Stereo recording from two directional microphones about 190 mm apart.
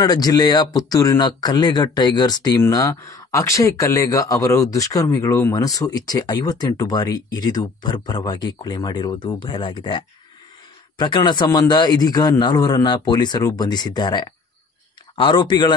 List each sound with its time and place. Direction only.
0.0 s speech: 20° left (ahead or behind)